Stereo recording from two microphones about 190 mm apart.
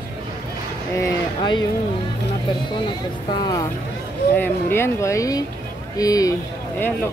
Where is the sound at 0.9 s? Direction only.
20° left (ahead or behind).